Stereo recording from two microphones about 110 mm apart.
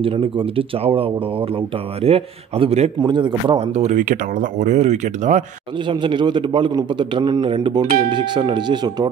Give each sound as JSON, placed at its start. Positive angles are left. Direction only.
{"t": 0.0, "sound": "speech", "side_deg": -55}
{"t": 3.0, "sound": "speech", "side_deg": -45}
{"t": 4.6, "sound": "speech", "side_deg": -90}
{"t": 5.9, "sound": "speech", "side_deg": -45}